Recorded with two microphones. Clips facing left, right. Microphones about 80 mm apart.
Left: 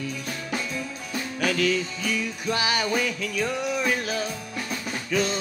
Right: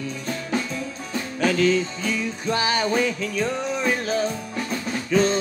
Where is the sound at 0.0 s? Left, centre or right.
Right.